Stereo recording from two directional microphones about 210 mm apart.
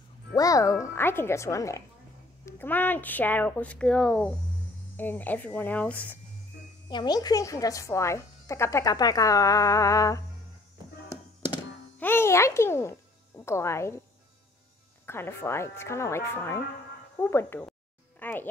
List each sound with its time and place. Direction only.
0.4 s speech: 15° left (ahead or behind)
6.9 s speech: 20° left (ahead or behind)
12.0 s speech: 10° left (ahead or behind)
15.0 s a woman's voice: 10° left (ahead or behind)